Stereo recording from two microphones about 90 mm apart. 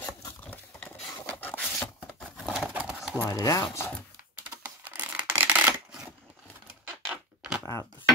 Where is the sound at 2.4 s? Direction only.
Centre (ahead or behind).